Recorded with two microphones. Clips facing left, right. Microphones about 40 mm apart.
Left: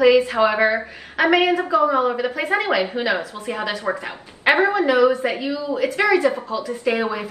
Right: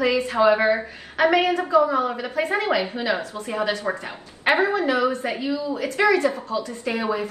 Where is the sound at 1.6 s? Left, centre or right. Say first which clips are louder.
Left 1 dB; left.